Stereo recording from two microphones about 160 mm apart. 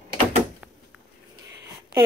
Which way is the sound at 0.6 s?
5° right (ahead or behind).